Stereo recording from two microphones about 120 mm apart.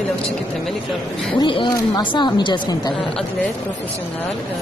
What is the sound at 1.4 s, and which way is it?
Speech, 40° left (ahead or behind).